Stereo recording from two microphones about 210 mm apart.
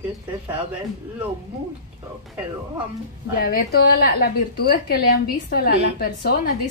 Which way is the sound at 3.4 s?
45° left (ahead or behind).